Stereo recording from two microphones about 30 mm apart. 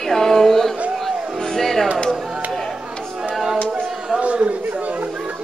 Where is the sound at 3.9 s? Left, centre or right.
Centre.